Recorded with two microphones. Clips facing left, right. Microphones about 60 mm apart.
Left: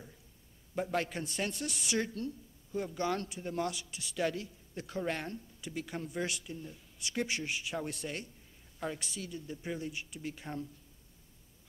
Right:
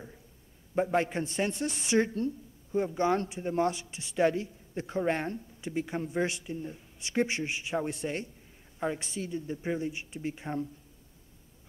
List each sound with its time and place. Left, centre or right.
0.7 s a woman's voice: right